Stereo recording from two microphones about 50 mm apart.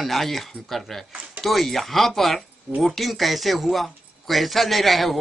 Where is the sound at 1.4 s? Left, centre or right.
Centre.